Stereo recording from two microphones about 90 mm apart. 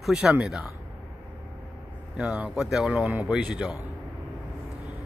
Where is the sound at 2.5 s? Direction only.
5° right (ahead or behind).